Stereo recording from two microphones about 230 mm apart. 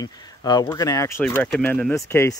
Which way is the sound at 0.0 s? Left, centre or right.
Centre.